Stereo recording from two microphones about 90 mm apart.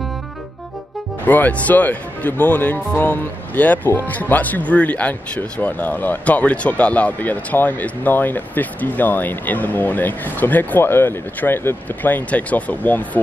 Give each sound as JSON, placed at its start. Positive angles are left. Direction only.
{"t": 1.2, "sound": "speech", "side_deg": 20}